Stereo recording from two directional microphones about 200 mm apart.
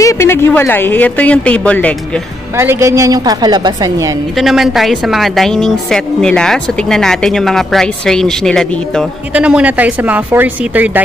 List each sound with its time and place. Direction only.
0.0 s speech: 15° left (ahead or behind)
2.5 s a woman's voice: 15° right (ahead or behind)
4.4 s a woman's voice: centre (ahead or behind)